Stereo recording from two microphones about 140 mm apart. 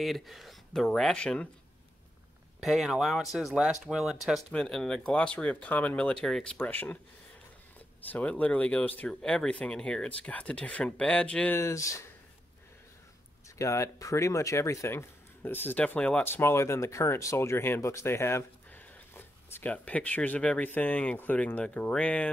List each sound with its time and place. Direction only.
0.0 s speech: centre (ahead or behind)
2.6 s speech: centre (ahead or behind)
8.1 s speech: 10° left (ahead or behind)
11.6 s speech: 20° left (ahead or behind)
13.6 s speech: 20° left (ahead or behind)